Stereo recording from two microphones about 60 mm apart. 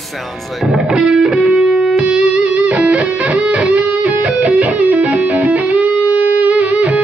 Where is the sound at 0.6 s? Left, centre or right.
Centre.